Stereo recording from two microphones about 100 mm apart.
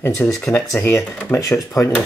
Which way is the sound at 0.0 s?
30° left (ahead or behind).